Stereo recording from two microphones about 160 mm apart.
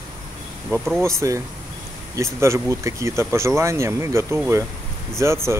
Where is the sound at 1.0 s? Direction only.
20° right (ahead or behind).